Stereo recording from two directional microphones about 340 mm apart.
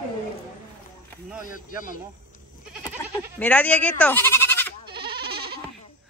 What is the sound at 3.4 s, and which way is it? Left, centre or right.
Speech, centre.